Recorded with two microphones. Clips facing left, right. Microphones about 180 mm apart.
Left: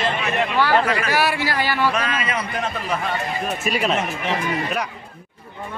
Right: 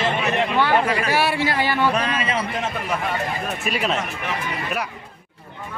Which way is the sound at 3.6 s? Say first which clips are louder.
Left 2 dB; centre (ahead or behind).